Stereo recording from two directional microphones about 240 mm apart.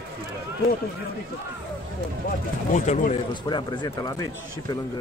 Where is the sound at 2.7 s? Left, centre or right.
Left.